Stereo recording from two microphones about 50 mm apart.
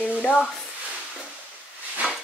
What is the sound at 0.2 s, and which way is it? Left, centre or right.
Speech, left.